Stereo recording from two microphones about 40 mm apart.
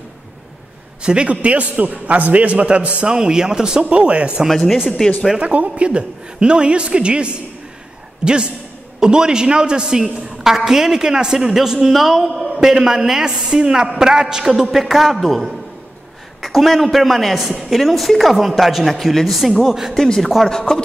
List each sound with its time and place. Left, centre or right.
1.0 s a man's voice: right
3.1 s a woman's voice: centre
3.8 s a man's voice: right
4.5 s a woman's voice: centre
5.4 s a woman's voice: right
9.0 s a woman's voice: centre
20.4 s a man's voice: centre